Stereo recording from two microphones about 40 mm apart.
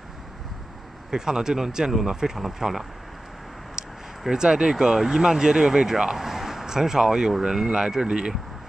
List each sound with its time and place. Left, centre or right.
1.1 s speech: centre
3.8 s a sound: centre
4.2 s speech: centre